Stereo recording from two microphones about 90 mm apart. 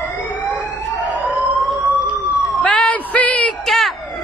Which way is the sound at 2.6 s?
10° left (ahead or behind).